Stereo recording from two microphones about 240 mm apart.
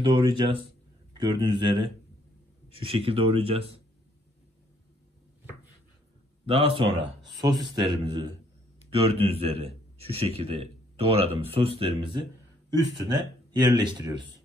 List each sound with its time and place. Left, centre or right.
0.0 s a man's voice: right
6.4 s a man's voice: right